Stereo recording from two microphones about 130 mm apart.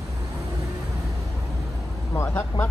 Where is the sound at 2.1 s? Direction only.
15° left (ahead or behind).